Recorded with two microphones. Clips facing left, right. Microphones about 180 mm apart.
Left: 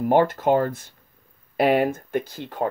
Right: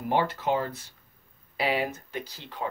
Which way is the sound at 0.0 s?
50° left (ahead or behind).